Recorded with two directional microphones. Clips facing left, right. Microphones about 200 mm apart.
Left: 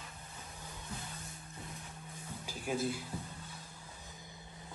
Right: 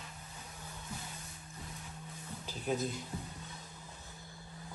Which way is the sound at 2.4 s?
10° left (ahead or behind).